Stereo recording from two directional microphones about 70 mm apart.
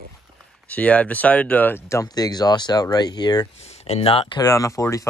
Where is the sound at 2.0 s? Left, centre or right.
Left.